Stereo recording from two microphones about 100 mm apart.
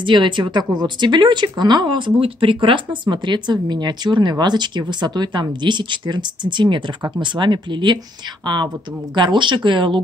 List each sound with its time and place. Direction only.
0.0 s speech: 50° right (ahead or behind)
9.1 s speech: 50° right (ahead or behind)